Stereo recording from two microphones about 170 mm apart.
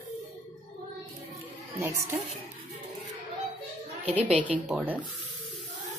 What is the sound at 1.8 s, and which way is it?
Speech, 15° right (ahead or behind).